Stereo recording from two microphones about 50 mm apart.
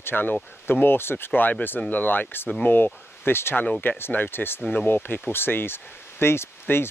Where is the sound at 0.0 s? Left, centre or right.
Left.